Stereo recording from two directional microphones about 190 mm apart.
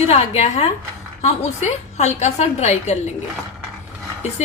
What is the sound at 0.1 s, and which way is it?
A woman's voice, 35° left (ahead or behind).